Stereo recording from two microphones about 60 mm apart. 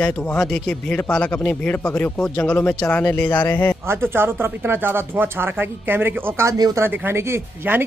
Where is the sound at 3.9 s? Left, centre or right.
Right.